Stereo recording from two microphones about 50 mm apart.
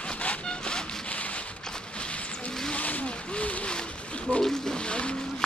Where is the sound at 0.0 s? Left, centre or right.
Left.